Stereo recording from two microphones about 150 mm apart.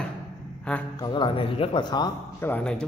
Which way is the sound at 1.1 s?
35° left (ahead or behind).